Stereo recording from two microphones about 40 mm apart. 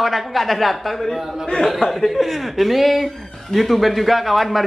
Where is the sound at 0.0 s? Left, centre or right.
Centre.